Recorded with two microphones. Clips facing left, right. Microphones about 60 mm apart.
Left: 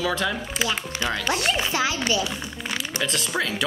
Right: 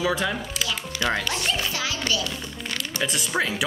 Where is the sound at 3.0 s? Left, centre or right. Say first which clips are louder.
Right 1 dB; centre.